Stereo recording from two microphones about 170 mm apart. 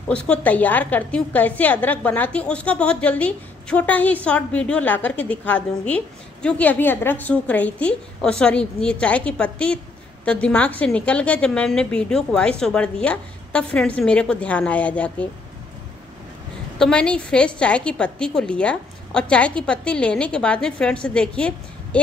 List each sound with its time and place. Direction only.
0.1 s a woman's voice: 5° left (ahead or behind)
16.7 s a woman's voice: 5° left (ahead or behind)